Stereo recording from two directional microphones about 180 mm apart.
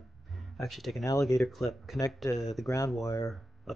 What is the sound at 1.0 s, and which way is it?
Speech, 20° left (ahead or behind).